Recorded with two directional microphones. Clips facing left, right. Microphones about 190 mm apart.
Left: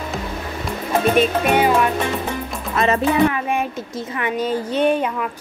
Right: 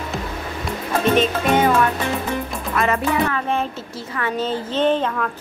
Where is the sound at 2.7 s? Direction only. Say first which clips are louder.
Left 2 dB; 25° left (ahead or behind).